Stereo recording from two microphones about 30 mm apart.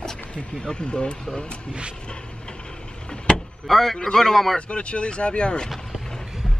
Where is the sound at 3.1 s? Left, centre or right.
Left.